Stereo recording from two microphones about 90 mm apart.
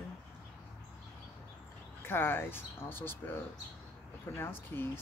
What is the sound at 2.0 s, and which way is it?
Speech, 25° left (ahead or behind).